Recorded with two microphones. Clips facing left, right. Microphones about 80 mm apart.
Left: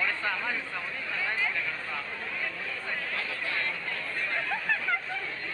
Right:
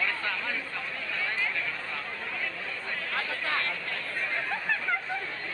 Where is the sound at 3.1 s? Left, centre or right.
Right.